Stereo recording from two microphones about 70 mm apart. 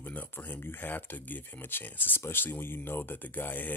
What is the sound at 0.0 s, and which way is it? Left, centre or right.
Speech, left.